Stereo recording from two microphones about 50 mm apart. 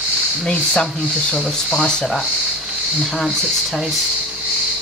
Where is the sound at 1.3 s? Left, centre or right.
Centre.